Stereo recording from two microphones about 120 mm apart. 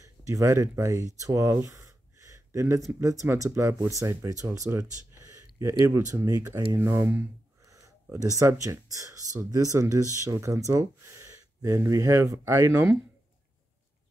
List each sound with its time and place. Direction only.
0.3 s speech: 25° right (ahead or behind)
6.8 s speech: 20° right (ahead or behind)
7.6 s speech: 30° right (ahead or behind)